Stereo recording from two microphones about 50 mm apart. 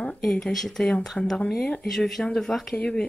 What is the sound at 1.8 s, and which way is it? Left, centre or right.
Speech, centre.